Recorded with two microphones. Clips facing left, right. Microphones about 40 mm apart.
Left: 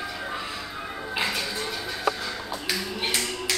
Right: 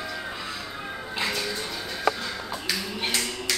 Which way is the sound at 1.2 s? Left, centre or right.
Centre.